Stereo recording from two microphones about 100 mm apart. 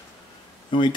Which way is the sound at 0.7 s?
55° left (ahead or behind).